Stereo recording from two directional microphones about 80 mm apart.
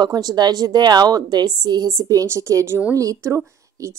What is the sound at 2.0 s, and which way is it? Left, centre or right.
Speech, right.